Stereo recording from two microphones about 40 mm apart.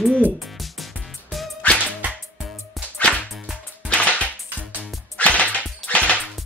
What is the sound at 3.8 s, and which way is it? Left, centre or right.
Music, left.